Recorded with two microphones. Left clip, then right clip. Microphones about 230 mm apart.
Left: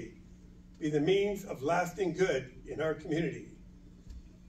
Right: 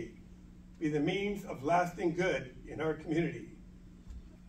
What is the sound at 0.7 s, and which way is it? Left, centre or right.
A man's voice, left.